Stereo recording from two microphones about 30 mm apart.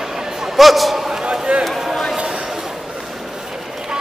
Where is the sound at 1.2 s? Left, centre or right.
Right.